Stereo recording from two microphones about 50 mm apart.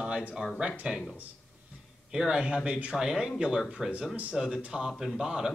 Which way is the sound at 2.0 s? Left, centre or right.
Centre.